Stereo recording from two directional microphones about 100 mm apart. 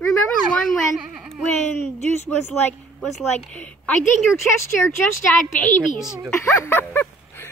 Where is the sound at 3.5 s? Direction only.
15° left (ahead or behind).